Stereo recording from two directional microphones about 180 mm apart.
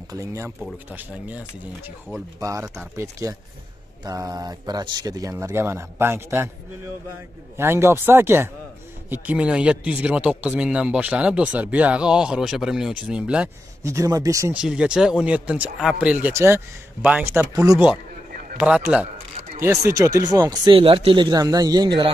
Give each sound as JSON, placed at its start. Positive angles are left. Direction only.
{"t": 0.1, "sound": "speech", "side_deg": -15}
{"t": 2.4, "sound": "speech", "side_deg": -15}
{"t": 7.5, "sound": "speech", "side_deg": -15}
{"t": 13.8, "sound": "speech", "side_deg": -15}
{"t": 14.6, "sound": "speech", "side_deg": -5}